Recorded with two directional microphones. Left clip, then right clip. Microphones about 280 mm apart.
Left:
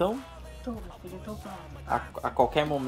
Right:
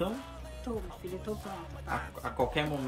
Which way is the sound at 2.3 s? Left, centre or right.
Centre.